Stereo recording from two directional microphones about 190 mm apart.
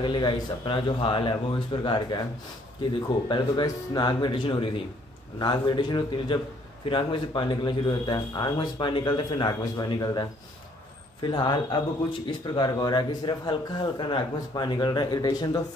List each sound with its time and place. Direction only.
0.0 s speech: 25° left (ahead or behind)
3.3 s speech: 25° left (ahead or behind)
11.2 s speech: 25° left (ahead or behind)